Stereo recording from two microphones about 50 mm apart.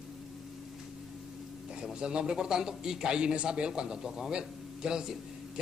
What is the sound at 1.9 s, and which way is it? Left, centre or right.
A man's voice, centre.